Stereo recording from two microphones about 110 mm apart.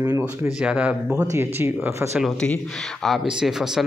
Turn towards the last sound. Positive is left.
turn(degrees=-5)  # may be behind; listen again after turning